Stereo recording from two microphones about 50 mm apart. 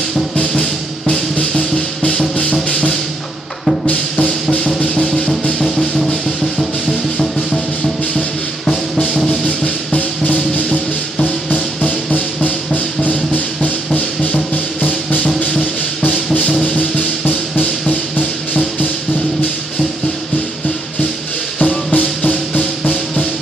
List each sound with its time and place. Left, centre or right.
0.4 s music: centre
3.8 s music: left; by 6.1 s centre
8.6 s music: centre
9.9 s music: left
17.6 s music: left
21.5 s music: left